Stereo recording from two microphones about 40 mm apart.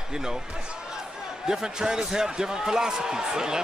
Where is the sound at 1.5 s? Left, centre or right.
Centre.